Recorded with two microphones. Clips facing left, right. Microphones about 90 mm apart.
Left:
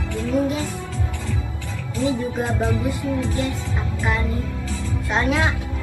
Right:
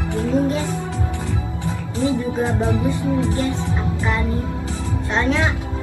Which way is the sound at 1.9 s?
20° right (ahead or behind).